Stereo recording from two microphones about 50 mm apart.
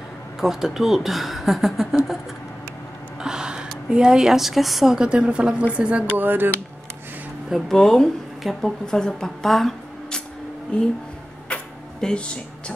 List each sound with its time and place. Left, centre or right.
0.4 s speech: centre
3.2 s speech: centre
4.9 s a woman's voice: centre
6.1 s speech: right
7.6 s speech: centre
10.7 s speech: left
11.4 s a sound: centre